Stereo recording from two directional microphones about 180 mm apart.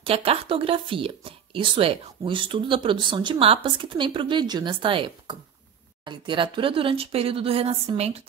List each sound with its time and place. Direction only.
0.0 s speech: 30° right (ahead or behind)